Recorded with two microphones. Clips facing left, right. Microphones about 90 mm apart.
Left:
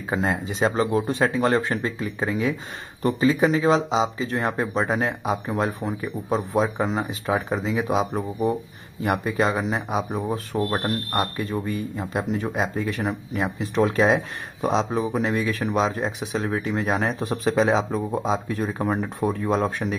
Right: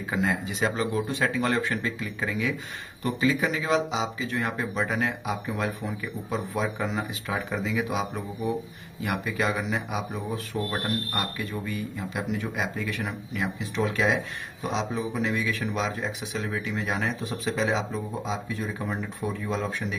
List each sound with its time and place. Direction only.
0.1 s speech: 30° left (ahead or behind)